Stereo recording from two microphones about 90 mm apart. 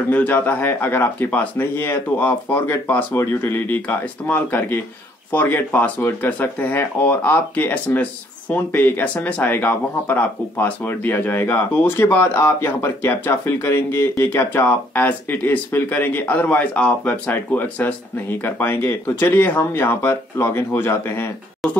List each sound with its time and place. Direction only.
0.1 s speech: 20° left (ahead or behind)